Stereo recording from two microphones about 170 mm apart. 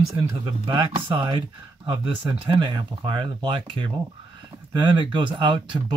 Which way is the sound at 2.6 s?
30° right (ahead or behind).